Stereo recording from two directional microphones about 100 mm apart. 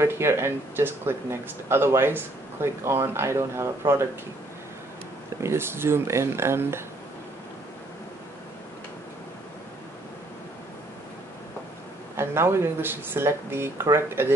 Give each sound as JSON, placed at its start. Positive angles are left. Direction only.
{"t": 0.0, "sound": "speech", "side_deg": -25}
{"t": 5.4, "sound": "speech", "side_deg": -25}
{"t": 12.2, "sound": "speech", "side_deg": -25}